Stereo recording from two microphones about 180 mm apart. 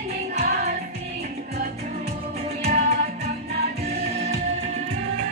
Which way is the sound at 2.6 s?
40° right (ahead or behind).